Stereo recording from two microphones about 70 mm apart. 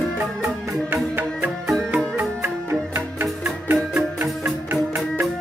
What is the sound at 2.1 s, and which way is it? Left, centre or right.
Music, right.